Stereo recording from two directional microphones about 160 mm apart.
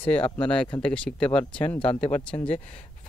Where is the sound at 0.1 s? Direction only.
10° left (ahead or behind).